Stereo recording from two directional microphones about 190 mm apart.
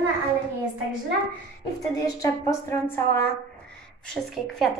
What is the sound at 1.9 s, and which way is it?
A woman's voice, 20° left (ahead or behind).